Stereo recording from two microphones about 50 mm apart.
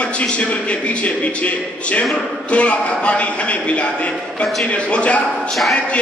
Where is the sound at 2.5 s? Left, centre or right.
Left.